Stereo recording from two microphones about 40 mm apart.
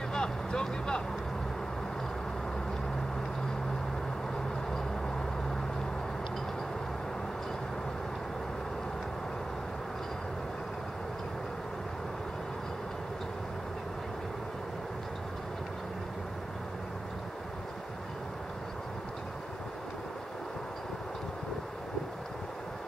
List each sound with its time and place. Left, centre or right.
0.1 s vehicle: centre